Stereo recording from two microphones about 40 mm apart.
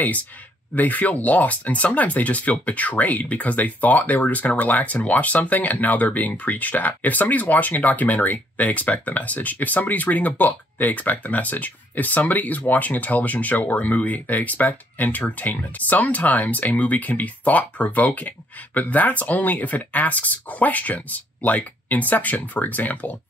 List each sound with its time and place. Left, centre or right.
0.7 s speech: left